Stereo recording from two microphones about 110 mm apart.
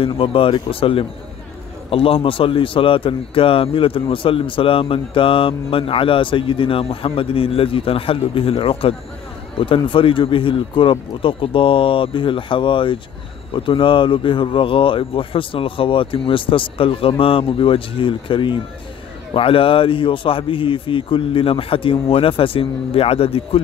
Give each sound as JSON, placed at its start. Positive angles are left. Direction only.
{"t": 0.0, "sound": "a man's voice", "side_deg": 55}